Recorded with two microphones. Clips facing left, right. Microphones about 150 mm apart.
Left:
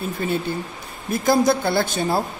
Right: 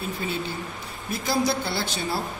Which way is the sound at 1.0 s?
50° left (ahead or behind).